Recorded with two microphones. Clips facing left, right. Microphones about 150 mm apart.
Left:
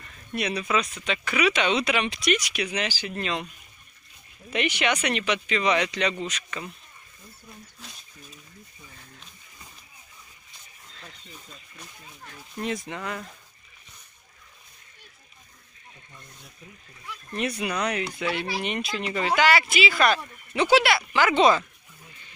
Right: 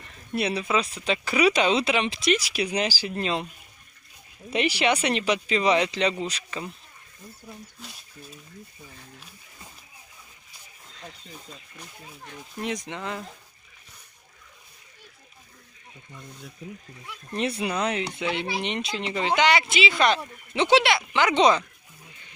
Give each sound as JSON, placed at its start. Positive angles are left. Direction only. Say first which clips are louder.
{"t": 0.3, "sound": "speech", "louder": "right 1 dB", "side_deg": -30}
{"t": 4.5, "sound": "speech", "louder": "right 2 dB", "side_deg": -30}
{"t": 12.3, "sound": "speech", "louder": "left 1 dB", "side_deg": -15}
{"t": 17.0, "sound": "speech", "louder": "right 1 dB", "side_deg": -25}